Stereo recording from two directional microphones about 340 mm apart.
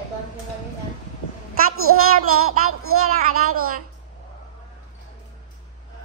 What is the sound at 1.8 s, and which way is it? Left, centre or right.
A child's voice, right.